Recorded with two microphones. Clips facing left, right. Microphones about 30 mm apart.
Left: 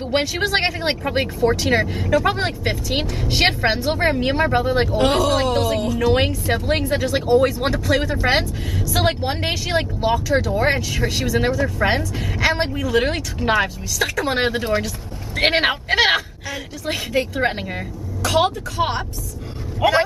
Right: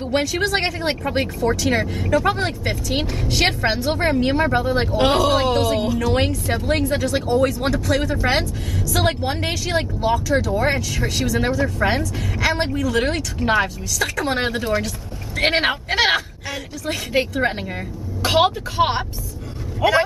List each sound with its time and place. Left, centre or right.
0.1 s speech: centre
5.2 s speech: centre
5.9 s speech: centre
17.3 s speech: centre
18.2 s speech: right
19.8 s speech: centre